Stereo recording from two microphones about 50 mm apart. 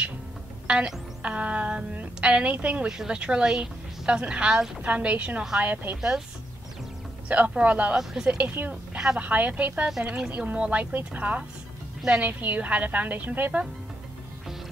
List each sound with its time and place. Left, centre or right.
0.7 s music: right
1.2 s speech: right
2.9 s a woman's voice: centre; by 5.9 s right
5.9 s speech: centre
7.2 s speech: right
7.9 s speech: centre
8.6 s a woman's voice: right
8.9 s a sound: centre
9.2 s a woman's voice: right
10.0 s speech: centre
10.3 s a woman's voice: right